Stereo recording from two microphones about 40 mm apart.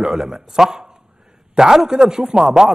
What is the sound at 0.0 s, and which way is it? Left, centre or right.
A man's voice, centre.